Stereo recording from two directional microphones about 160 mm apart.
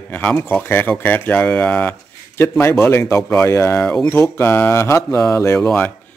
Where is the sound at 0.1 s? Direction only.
10° left (ahead or behind).